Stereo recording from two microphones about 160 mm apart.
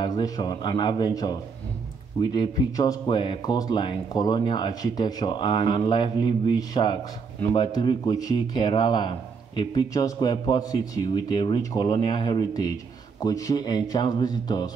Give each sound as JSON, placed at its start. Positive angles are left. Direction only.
{"t": 0.0, "sound": "speech", "side_deg": 25}